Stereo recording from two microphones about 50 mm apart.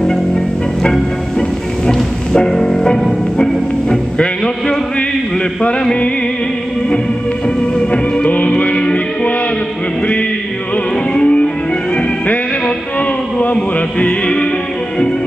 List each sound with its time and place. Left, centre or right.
0.0 s music: centre
1.9 s music: centre
7.4 s music: left
11.1 s music: left
13.6 s music: left